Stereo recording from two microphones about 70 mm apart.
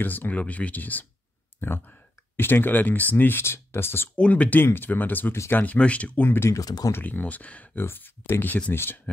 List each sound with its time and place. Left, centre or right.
0.0 s speech: left
4.2 s speech: left
6.2 s speech: left
6.5 s speech: left
6.9 s speech: left
7.8 s speech: left